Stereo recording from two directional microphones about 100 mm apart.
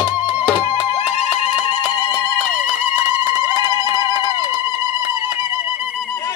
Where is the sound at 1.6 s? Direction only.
45° left (ahead or behind).